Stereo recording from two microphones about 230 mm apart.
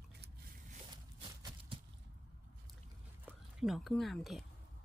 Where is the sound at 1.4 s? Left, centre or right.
Right.